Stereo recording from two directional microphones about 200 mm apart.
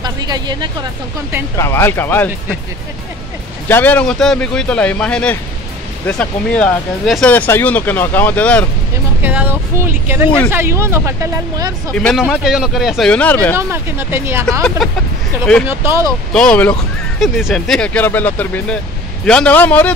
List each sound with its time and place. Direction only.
0.0 s speech: 20° right (ahead or behind)
1.6 s speech: 10° left (ahead or behind)
3.6 s speech: 10° left (ahead or behind)
9.2 s speech: 10° right (ahead or behind)
11.9 s speech: 5° left (ahead or behind)
13.6 s speech: 10° right (ahead or behind)
14.8 s speech: centre (ahead or behind)
15.7 s speech: 10° right (ahead or behind)
16.3 s speech: 5° left (ahead or behind)